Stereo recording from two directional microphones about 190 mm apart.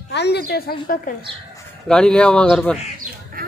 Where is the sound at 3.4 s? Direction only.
50° right (ahead or behind).